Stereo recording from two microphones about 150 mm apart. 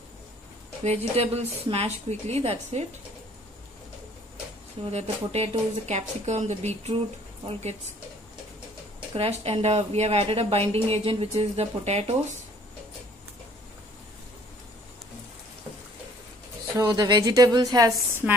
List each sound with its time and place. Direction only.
0.8 s speech: 45° right (ahead or behind)
5.0 s speech: 40° right (ahead or behind)
9.1 s speech: 40° right (ahead or behind)
16.7 s a woman's voice: 25° right (ahead or behind)
18.2 s speech: 5° right (ahead or behind)